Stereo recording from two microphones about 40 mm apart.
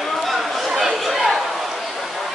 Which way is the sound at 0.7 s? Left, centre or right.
Centre.